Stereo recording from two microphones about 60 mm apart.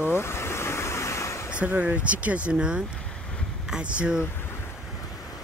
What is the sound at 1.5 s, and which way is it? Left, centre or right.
Speech, right.